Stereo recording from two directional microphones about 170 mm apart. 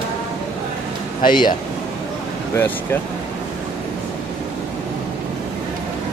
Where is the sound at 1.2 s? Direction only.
25° left (ahead or behind).